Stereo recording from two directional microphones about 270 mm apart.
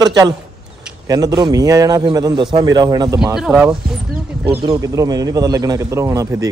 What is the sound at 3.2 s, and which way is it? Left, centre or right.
A man's voice, centre.